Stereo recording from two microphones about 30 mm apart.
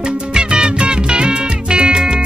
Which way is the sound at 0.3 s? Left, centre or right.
Right.